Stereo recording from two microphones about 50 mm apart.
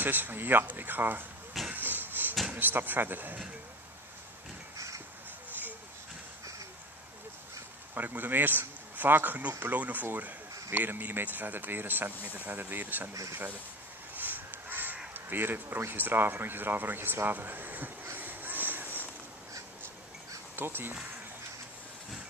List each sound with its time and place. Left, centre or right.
0.0 s speech: right
1.7 s a sound: right
2.5 s speech: right
7.9 s speech: right
14.1 s crow: right
15.1 s speech: right
18.1 s crow: right
20.5 s speech: right